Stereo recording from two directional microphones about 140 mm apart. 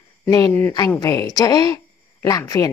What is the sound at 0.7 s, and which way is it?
A woman's voice, 25° left (ahead or behind).